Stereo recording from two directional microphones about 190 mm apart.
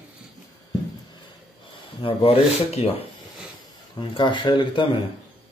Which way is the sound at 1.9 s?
30° left (ahead or behind).